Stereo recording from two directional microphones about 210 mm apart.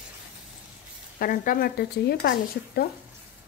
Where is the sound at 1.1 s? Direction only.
40° left (ahead or behind).